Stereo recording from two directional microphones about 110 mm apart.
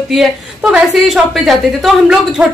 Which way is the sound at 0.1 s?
Centre (ahead or behind).